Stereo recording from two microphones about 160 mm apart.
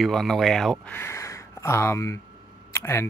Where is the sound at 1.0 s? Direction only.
15° left (ahead or behind).